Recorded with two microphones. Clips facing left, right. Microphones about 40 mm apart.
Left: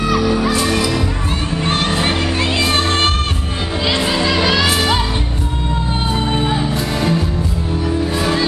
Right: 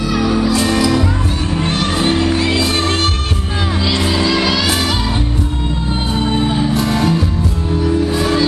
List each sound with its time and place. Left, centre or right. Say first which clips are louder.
0.4 s music: right 2 dB; left
4.0 s music: right 1 dB; centre
6.1 s music: right 3 dB; centre
8.2 s music: right 2 dB; centre